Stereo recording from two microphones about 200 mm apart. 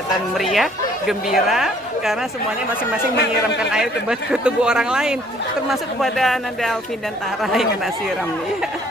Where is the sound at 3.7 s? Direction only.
5° right (ahead or behind).